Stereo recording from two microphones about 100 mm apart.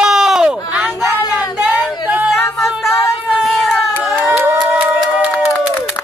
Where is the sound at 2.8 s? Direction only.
30° left (ahead or behind).